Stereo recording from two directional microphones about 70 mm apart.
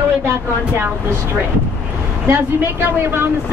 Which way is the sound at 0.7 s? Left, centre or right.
Right.